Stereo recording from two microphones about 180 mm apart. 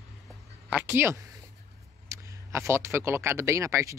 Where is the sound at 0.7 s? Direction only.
10° right (ahead or behind).